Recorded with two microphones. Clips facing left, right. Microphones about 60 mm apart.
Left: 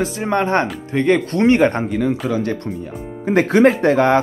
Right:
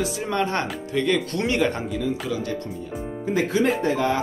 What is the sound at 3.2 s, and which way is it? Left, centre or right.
Music, left.